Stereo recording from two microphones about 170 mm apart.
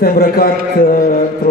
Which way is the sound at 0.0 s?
60° left (ahead or behind).